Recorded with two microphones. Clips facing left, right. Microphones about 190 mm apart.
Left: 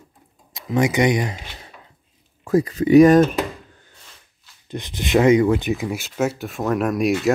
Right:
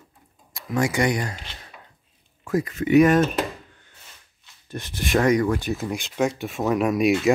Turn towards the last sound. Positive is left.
turn(degrees=0)  # may be behind; listen again after turning